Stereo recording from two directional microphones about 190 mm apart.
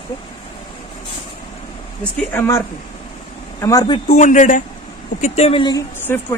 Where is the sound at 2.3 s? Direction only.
15° left (ahead or behind).